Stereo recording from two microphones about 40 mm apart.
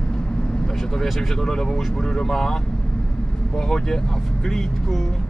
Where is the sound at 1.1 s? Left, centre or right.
Centre.